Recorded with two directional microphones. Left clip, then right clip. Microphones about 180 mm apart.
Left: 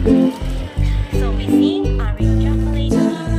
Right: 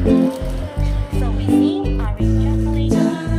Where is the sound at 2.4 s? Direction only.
5° right (ahead or behind).